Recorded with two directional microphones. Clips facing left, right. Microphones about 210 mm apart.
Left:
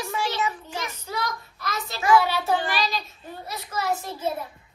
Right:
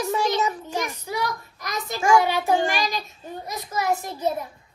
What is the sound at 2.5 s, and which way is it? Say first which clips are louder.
Child singing: right 3 dB; 45° right (ahead or behind).